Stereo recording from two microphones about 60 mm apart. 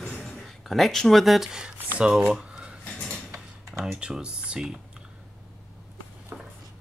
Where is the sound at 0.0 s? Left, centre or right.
Centre.